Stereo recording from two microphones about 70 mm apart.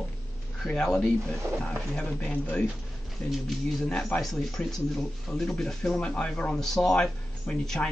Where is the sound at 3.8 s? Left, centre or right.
Centre.